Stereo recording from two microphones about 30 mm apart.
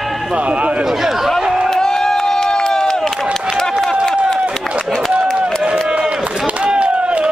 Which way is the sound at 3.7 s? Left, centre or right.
Centre.